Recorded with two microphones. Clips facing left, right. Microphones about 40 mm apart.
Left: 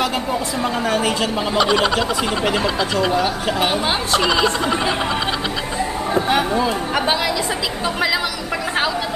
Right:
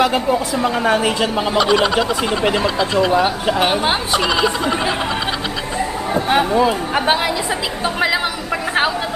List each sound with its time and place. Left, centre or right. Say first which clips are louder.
0.8 s speech: right 2 dB; right
1.6 s speech: right 2 dB; centre
3.5 s a woman's voice: right 2 dB; centre
4.2 s speech: even; centre
6.3 s a woman's voice: right 3 dB; centre